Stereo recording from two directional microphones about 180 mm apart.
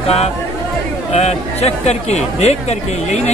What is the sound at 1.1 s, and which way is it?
Speech, 35° left (ahead or behind).